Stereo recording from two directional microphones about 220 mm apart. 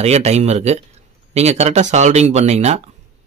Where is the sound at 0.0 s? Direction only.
30° right (ahead or behind).